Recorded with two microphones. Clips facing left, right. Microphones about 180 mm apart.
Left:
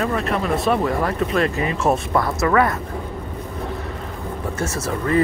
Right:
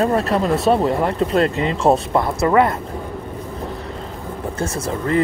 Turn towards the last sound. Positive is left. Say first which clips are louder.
# right 1 dB
turn(degrees=-30)  # may be behind; listen again after turning